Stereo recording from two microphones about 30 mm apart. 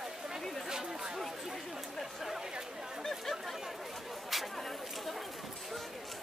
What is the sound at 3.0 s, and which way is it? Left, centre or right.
Chatter, centre.